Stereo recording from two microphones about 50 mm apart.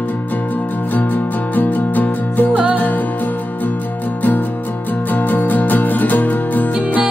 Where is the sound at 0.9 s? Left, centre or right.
Left.